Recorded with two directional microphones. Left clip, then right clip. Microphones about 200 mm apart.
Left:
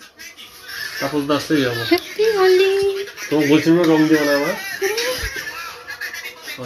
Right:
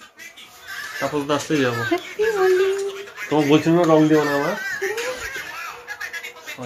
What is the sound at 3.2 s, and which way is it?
Speech, 45° right (ahead or behind).